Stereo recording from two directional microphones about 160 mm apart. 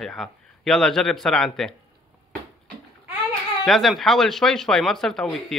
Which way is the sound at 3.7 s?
Centre (ahead or behind).